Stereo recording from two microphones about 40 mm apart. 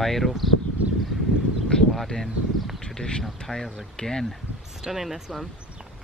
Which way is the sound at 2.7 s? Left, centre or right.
Centre.